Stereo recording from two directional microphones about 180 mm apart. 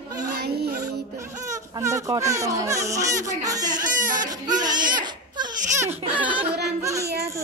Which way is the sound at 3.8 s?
50° right (ahead or behind).